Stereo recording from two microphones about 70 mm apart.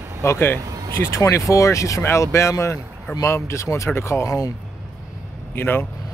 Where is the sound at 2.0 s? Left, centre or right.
Left.